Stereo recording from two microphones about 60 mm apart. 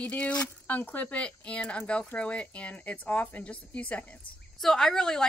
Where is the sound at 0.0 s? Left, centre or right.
Left.